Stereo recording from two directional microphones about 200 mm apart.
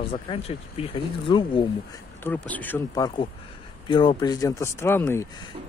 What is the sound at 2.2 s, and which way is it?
Speech, 10° left (ahead or behind).